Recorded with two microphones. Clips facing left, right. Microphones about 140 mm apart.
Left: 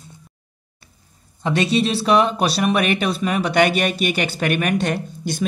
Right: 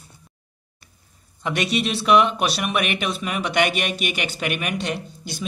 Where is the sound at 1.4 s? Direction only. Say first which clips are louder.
Left 5 dB; 30° left (ahead or behind).